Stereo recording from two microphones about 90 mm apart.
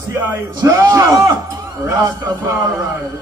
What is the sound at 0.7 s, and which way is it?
Speech, 35° right (ahead or behind).